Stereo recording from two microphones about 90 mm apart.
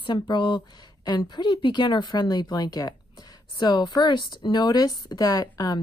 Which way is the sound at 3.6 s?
55° left (ahead or behind).